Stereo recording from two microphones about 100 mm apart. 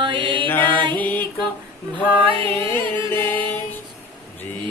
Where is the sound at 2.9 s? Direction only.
20° left (ahead or behind).